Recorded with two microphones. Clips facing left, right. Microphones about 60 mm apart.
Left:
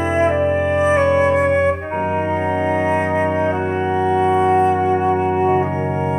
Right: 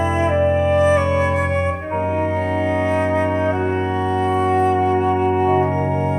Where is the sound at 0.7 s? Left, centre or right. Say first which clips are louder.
Left 1 dB; centre.